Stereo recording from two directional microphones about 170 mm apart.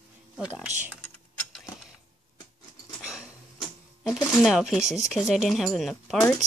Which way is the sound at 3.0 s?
5° right (ahead or behind).